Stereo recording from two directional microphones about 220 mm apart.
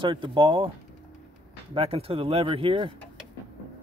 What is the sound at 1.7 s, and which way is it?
Speech, 25° right (ahead or behind).